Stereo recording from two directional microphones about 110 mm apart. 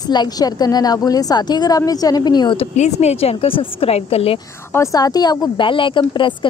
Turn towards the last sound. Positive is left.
turn(degrees=45)  # may be behind; listen again after turning